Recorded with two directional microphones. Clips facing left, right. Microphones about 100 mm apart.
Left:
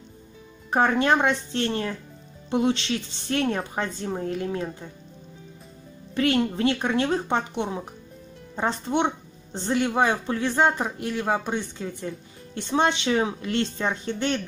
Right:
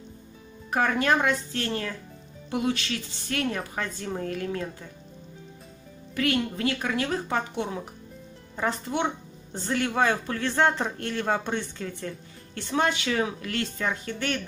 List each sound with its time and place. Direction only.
0.7 s a woman's voice: 25° left (ahead or behind)
6.1 s a woman's voice: 30° left (ahead or behind); by 11.9 s 10° left (ahead or behind)
12.5 s a woman's voice: 25° left (ahead or behind)